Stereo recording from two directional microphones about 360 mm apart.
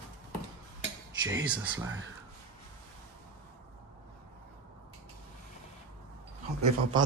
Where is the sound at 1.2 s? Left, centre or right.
Centre.